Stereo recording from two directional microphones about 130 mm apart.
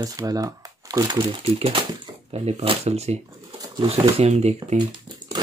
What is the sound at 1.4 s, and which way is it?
Speech, 45° right (ahead or behind).